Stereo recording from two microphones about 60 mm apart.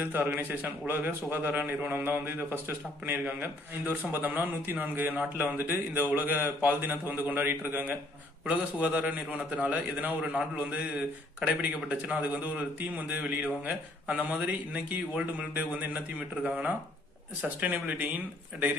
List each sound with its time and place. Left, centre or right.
0.0 s a man's voice: right
8.5 s a man's voice: right